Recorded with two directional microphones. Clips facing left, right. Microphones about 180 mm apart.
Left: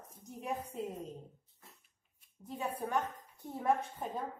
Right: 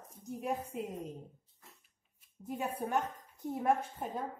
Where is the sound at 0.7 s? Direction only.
15° right (ahead or behind).